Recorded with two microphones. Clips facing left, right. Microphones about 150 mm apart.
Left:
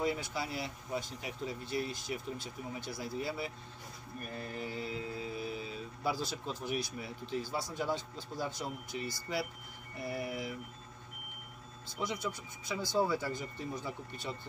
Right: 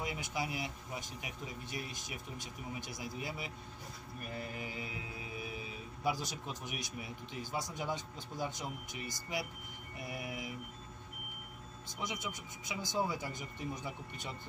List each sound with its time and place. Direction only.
0.0 s speech: 15° right (ahead or behind)
12.0 s speech: 20° right (ahead or behind)